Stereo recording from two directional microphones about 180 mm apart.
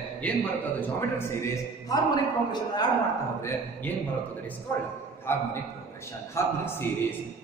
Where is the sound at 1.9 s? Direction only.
20° left (ahead or behind).